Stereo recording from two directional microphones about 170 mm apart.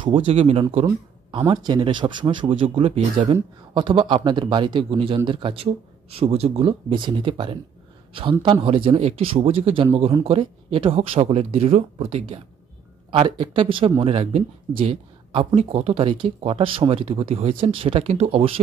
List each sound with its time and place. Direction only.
0.0 s a man's voice: 30° right (ahead or behind)